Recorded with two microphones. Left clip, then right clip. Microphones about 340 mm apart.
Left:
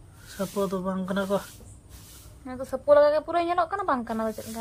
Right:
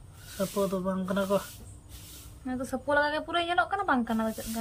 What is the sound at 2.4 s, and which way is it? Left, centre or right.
Speech, centre.